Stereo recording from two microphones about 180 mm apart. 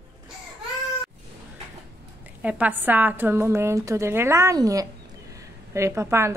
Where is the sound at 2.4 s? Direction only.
10° right (ahead or behind).